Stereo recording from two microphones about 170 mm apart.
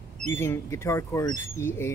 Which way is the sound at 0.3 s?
15° left (ahead or behind).